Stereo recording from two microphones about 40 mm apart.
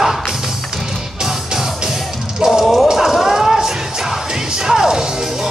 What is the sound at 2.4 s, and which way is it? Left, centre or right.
Music, centre.